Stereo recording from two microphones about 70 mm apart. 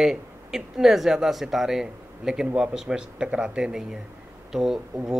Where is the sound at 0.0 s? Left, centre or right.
Centre.